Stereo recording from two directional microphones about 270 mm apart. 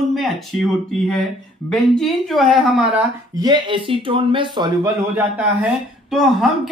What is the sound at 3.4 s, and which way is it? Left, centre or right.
A man's voice, centre.